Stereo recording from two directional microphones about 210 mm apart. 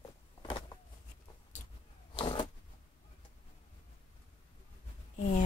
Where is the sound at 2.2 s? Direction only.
25° left (ahead or behind).